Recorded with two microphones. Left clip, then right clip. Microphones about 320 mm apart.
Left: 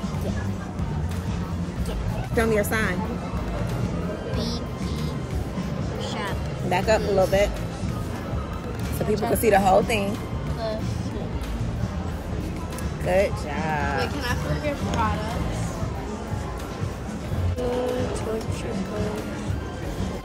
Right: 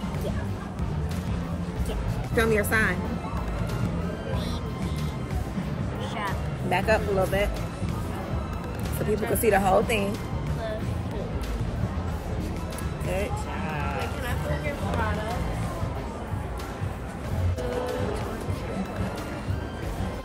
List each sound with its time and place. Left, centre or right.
2.3 s speech: centre
6.1 s music: centre
9.1 s speech: centre
13.1 s speech: left